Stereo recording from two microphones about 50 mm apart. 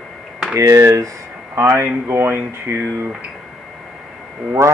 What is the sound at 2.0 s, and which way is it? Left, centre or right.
Speech, right.